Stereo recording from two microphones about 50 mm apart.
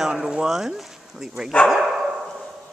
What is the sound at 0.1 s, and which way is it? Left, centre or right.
Speech, centre.